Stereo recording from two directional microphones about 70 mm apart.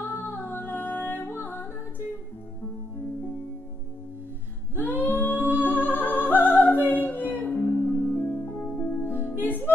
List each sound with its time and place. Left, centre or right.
0.0 s music: left
4.7 s music: left